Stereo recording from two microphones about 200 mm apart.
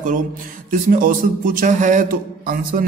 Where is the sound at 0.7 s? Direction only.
40° right (ahead or behind).